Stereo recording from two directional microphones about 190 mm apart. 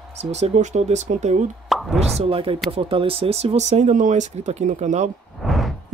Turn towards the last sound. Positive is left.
turn(degrees=0)  # may be behind; listen again after turning